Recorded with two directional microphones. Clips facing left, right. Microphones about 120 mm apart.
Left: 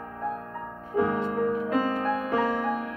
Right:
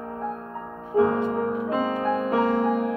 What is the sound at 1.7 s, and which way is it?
Music, 25° right (ahead or behind).